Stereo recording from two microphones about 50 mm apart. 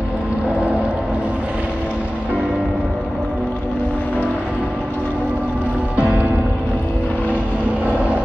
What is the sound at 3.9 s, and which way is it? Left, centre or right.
Vehicle, left.